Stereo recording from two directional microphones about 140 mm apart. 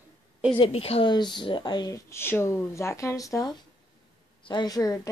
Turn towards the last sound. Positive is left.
turn(degrees=25)  # may be behind; listen again after turning